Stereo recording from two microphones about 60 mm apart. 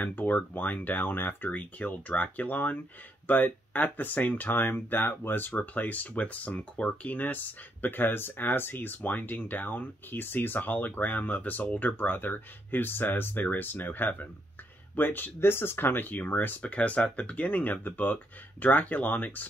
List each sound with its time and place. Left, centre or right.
0.0 s speech: left
1.5 s speech: left